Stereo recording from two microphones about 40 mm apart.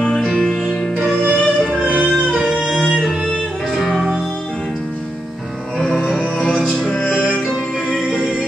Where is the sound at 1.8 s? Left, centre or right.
Right.